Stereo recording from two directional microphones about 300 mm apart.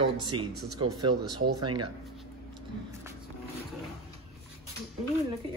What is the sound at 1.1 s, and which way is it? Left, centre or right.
Speech, right.